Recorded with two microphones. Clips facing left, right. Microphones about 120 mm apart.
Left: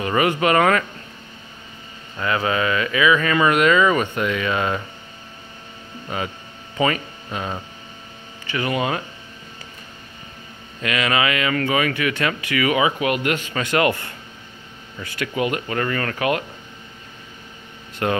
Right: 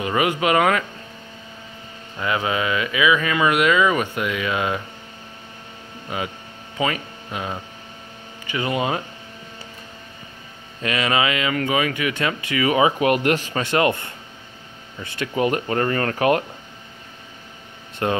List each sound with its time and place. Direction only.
0.0 s speech: 10° right (ahead or behind)
2.1 s speech: 15° right (ahead or behind)
6.0 s speech: 5° right (ahead or behind)
8.5 s speech: 20° right (ahead or behind)
10.8 s speech: 30° right (ahead or behind)
12.7 s speech: 40° right (ahead or behind); by 15.2 s 25° right (ahead or behind)
15.3 s speech: 40° right (ahead or behind)
18.0 s speech: 25° right (ahead or behind)